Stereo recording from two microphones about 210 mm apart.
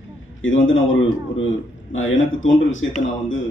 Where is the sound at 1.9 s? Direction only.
65° left (ahead or behind).